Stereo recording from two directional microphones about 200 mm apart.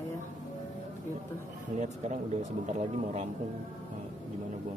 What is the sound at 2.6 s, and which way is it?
Speech, 35° right (ahead or behind).